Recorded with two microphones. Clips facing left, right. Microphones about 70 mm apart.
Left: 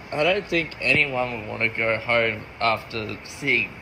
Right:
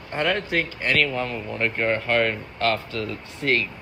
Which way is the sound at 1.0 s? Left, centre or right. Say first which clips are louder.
Even; centre.